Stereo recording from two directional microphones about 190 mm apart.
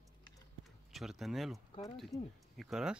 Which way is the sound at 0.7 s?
Centre (ahead or behind).